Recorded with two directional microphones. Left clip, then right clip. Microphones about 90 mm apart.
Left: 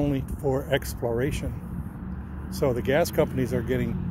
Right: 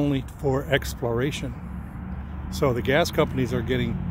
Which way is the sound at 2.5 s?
35° right (ahead or behind).